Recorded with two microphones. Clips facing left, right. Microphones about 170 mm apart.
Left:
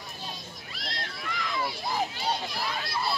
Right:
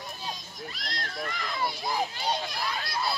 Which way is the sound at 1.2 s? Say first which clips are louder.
Right 1 dB; 45° right (ahead or behind).